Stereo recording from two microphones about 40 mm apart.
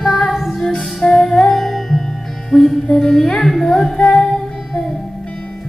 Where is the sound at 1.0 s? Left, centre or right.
Centre.